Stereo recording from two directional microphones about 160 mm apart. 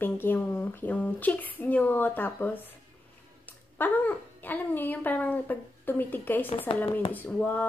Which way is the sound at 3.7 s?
10° left (ahead or behind).